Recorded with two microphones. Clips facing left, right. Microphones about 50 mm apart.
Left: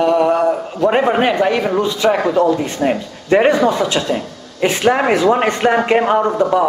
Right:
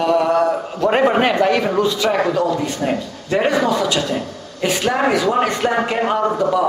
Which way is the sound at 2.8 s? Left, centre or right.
Left.